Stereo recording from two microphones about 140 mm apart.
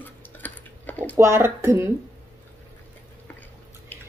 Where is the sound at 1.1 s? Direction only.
20° right (ahead or behind).